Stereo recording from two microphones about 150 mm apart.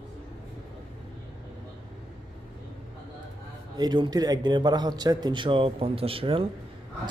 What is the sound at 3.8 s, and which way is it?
A man's voice, 30° right (ahead or behind).